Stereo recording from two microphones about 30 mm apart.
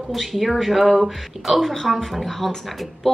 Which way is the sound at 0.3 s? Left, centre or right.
Centre.